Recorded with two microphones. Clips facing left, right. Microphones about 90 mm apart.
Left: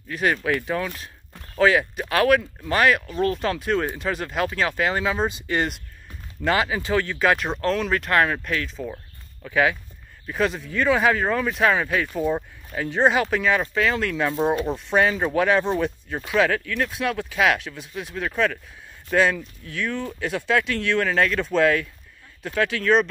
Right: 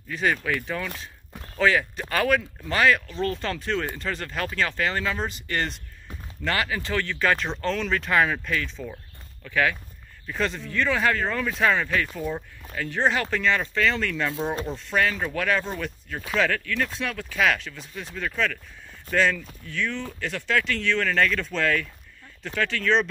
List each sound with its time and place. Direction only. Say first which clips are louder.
0.1 s speech: left 3 dB; 5° left (ahead or behind)
8.8 s a sound: left 4 dB; 15° left (ahead or behind)
10.2 s speech: left 4 dB; 10° left (ahead or behind)